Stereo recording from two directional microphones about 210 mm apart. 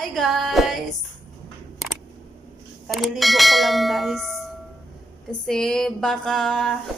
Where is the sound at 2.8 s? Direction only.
Centre (ahead or behind).